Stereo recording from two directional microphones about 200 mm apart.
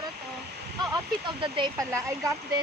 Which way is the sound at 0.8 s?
20° right (ahead or behind).